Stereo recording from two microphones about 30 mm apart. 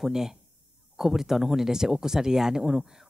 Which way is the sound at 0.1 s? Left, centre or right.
Centre.